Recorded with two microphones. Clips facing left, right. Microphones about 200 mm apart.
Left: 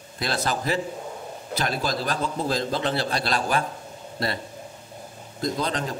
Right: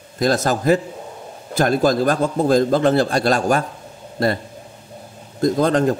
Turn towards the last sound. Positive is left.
turn(degrees=-50)  # may be behind; listen again after turning